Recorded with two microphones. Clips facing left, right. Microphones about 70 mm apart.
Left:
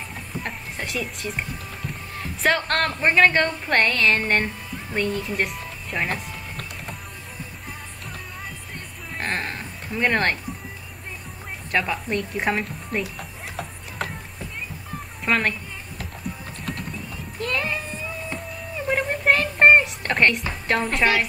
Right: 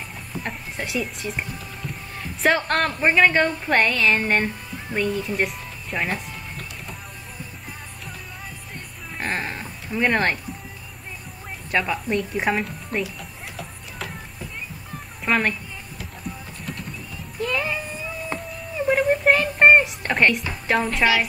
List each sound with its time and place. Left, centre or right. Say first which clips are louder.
0.4 s a woman's voice: right 2 dB; centre
2.4 s a woman's voice: right 1 dB; centre
9.2 s a sound: right 1 dB; centre
11.7 s a woman's voice: right 1 dB; centre
13.6 s a sound: left 5 dB; left
15.2 s a woman's voice: right 1 dB; centre
17.4 s music: right 1 dB; centre
18.9 s a sound: right 3 dB; centre
20.6 s speech: right 2 dB; centre